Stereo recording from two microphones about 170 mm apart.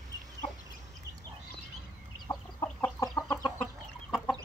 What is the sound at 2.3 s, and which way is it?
Chicken, 20° left (ahead or behind).